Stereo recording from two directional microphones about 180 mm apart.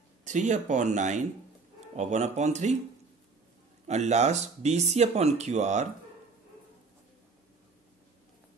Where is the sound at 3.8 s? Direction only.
40° right (ahead or behind).